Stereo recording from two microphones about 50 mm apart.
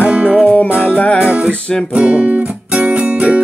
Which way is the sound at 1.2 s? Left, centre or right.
Right.